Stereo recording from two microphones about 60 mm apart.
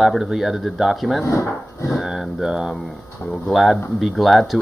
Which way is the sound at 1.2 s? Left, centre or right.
Left.